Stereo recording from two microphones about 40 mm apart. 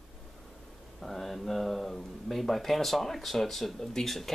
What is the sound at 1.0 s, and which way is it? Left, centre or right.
Speech, centre.